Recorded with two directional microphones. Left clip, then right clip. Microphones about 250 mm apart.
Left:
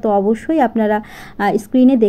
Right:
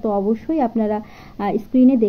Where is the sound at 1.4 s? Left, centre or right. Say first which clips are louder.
Left 4 dB; left.